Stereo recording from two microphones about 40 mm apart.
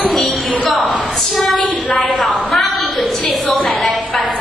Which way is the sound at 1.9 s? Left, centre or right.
Centre.